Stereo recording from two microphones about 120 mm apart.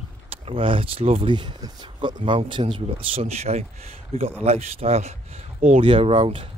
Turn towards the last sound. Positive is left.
turn(degrees=-50)  # may be behind; listen again after turning